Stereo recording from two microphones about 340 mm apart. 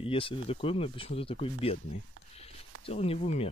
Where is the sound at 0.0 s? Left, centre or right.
Centre.